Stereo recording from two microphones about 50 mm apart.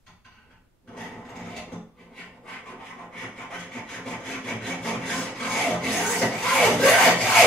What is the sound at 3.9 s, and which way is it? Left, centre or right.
Wood, centre.